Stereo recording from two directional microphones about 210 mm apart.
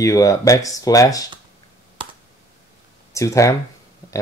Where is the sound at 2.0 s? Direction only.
25° right (ahead or behind).